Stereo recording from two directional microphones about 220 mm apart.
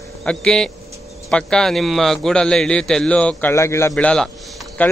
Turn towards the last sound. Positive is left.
turn(degrees=5)  # may be behind; listen again after turning